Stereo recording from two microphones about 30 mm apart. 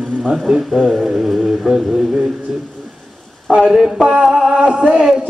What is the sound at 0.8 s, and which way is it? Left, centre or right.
Speech, centre.